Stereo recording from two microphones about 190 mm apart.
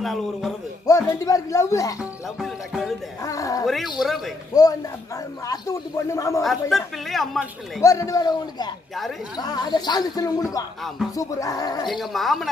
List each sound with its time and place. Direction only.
0.0 s speech: centre (ahead or behind)
0.8 s speech: 15° left (ahead or behind)
2.0 s music: centre (ahead or behind)
3.2 s a sound: 15° left (ahead or behind)
3.6 s speech: centre (ahead or behind)
4.5 s speech: 20° left (ahead or behind)
6.4 s speech: centre (ahead or behind)
7.8 s speech: 15° left (ahead or behind)
11.9 s speech: centre (ahead or behind)